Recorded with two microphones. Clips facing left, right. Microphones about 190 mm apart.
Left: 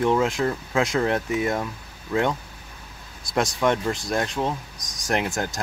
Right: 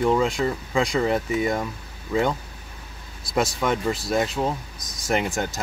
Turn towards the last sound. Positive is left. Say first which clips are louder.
# right 1 dB
turn(degrees=0)  # may be behind; listen again after turning